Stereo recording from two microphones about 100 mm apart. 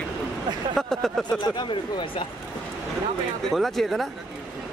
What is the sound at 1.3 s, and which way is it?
Speech, 45° left (ahead or behind).